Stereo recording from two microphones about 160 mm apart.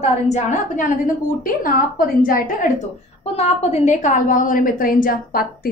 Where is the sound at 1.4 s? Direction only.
60° left (ahead or behind).